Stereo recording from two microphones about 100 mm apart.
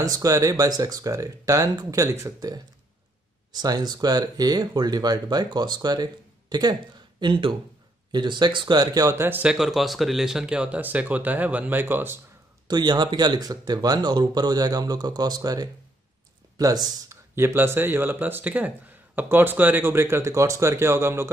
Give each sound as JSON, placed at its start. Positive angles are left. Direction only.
{"t": 0.0, "sound": "speech", "side_deg": -35}
{"t": 9.2, "sound": "speech", "side_deg": -20}
{"t": 9.5, "sound": "speech", "side_deg": -5}
{"t": 12.6, "sound": "speech", "side_deg": -45}
{"t": 17.4, "sound": "speech", "side_deg": -25}